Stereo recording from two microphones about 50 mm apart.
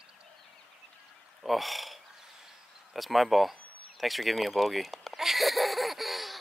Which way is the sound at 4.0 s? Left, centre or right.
Centre.